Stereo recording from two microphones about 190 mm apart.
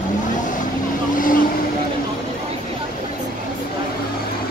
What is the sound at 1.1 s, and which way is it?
Vehicle, 45° left (ahead or behind).